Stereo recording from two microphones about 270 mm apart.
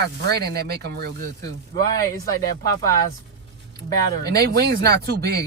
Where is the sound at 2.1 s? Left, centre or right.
Centre.